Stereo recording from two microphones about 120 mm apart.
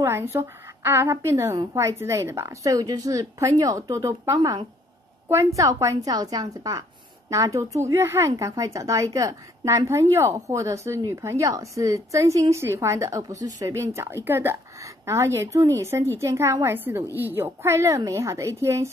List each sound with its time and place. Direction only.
0.0 s a woman's voice: 20° right (ahead or behind)
4.4 s speech: 40° right (ahead or behind)
5.6 s a woman's voice: 25° right (ahead or behind)